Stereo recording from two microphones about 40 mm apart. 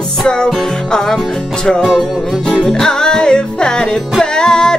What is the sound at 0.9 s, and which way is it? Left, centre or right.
Music, centre.